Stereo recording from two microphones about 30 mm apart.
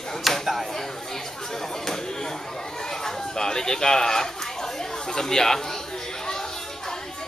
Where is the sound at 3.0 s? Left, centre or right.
Left.